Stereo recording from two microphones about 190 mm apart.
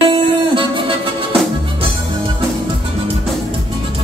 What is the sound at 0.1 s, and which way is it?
Music, 25° right (ahead or behind).